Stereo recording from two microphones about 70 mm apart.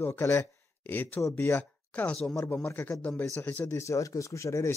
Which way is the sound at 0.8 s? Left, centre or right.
Left.